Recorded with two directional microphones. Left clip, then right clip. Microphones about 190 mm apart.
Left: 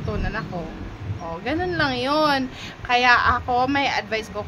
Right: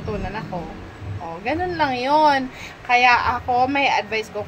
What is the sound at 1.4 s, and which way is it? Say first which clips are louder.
A woman's voice: right 2 dB; 15° left (ahead or behind).